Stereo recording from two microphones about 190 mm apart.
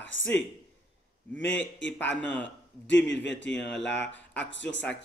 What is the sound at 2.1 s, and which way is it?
Speech, 10° left (ahead or behind).